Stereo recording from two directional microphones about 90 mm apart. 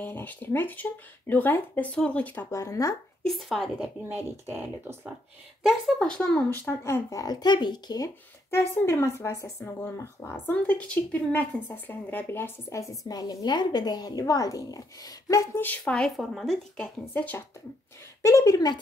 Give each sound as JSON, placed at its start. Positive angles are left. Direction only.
{"t": 0.0, "sound": "a woman's voice", "side_deg": 20}
{"t": 2.5, "sound": "speech", "side_deg": 35}
{"t": 3.3, "sound": "a woman's voice", "side_deg": 0}
{"t": 4.1, "sound": "speech", "side_deg": -25}
{"t": 5.6, "sound": "speech", "side_deg": 0}
{"t": 6.8, "sound": "speech", "side_deg": 35}
{"t": 8.5, "sound": "speech", "side_deg": 25}
{"t": 9.8, "sound": "a woman's voice", "side_deg": 25}
{"t": 13.1, "sound": "speech", "side_deg": 50}
{"t": 15.6, "sound": "speech", "side_deg": 15}
{"t": 16.2, "sound": "a woman's voice", "side_deg": 0}
{"t": 17.0, "sound": "a woman's voice", "side_deg": 20}
{"t": 18.2, "sound": "speech", "side_deg": 35}